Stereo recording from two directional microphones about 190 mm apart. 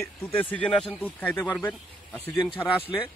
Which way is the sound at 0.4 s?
5° left (ahead or behind).